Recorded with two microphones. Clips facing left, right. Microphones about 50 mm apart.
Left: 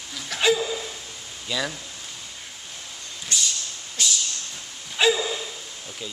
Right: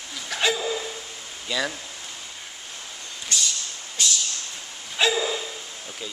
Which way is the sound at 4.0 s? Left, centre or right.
Centre.